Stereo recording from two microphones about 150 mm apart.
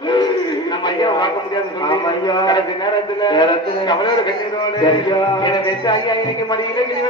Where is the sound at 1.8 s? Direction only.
30° left (ahead or behind).